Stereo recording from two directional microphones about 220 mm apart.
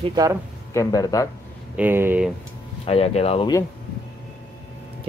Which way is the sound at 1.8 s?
10° right (ahead or behind).